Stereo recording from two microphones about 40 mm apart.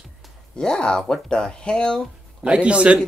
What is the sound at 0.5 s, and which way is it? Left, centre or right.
Speech, left.